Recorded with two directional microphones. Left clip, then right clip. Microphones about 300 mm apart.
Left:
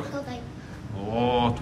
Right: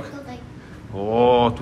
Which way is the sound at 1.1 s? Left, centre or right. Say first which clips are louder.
Right 8 dB; centre.